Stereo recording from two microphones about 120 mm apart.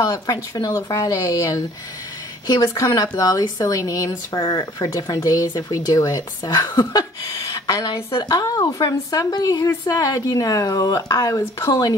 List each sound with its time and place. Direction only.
0.0 s a woman's voice: 30° left (ahead or behind)